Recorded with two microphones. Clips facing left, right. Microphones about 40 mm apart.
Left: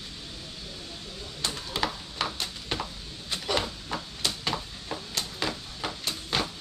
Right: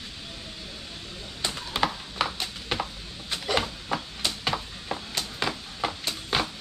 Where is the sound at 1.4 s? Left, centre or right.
Centre.